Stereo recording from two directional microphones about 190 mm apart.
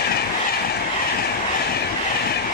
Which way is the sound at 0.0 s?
55° left (ahead or behind).